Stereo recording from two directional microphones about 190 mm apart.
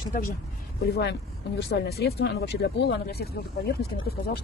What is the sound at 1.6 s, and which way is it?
Speech, 60° left (ahead or behind).